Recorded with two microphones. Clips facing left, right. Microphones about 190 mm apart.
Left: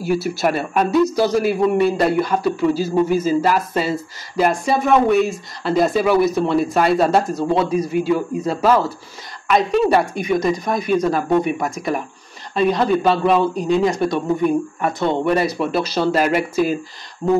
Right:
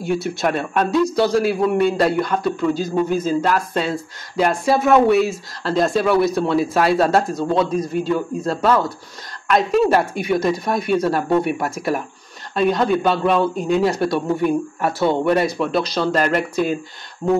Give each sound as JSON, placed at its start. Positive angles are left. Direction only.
{"t": 0.0, "sound": "a man's voice", "side_deg": 5}